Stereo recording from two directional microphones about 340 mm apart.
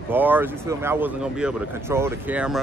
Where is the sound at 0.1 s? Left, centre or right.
Centre.